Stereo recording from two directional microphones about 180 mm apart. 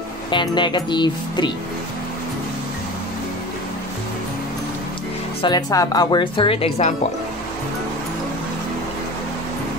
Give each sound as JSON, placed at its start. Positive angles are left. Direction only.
{"t": 0.3, "sound": "speech", "side_deg": 25}
{"t": 5.4, "sound": "speech", "side_deg": 20}